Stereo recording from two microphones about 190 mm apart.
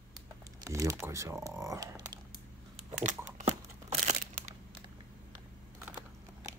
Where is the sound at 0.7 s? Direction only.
15° right (ahead or behind).